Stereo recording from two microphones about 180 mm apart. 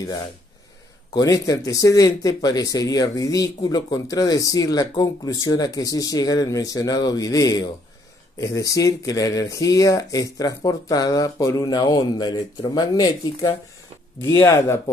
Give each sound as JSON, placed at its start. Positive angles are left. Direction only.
{"t": 1.1, "sound": "speech", "side_deg": 20}